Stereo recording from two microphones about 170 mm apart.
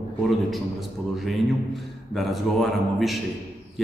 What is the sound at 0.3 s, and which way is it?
A man's voice, centre (ahead or behind).